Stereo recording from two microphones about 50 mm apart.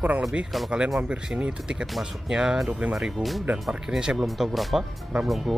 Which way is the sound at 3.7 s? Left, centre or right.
Centre.